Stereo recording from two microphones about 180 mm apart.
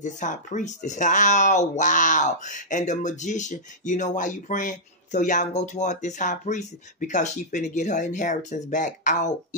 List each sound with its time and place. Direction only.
0.0 s speech: 45° left (ahead or behind)